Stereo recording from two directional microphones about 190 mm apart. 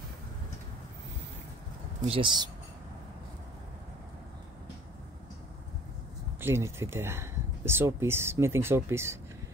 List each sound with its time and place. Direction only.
2.0 s speech: 30° right (ahead or behind)
6.4 s speech: 15° right (ahead or behind)